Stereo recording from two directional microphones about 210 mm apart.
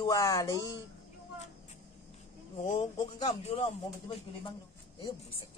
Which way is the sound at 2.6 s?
35° left (ahead or behind).